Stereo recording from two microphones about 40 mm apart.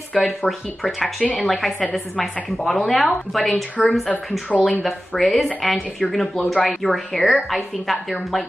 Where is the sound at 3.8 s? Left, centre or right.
Centre.